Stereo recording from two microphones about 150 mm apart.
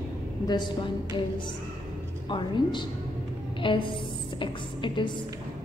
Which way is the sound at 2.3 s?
30° left (ahead or behind).